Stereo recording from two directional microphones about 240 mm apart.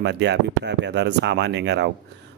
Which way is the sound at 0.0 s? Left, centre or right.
Right.